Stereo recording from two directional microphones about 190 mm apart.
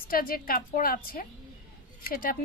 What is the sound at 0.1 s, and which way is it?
A woman's voice, 50° left (ahead or behind).